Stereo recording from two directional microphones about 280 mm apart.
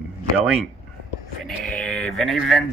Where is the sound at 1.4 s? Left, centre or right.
Centre.